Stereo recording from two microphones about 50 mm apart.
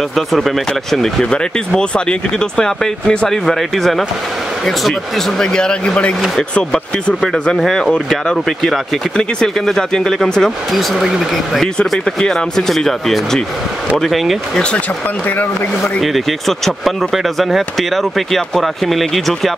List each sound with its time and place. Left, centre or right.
0.1 s speech: centre
1.8 s speech: centre
5.4 s speech: centre
7.5 s speech: centre
14.5 s speech: centre
16.0 s speech: centre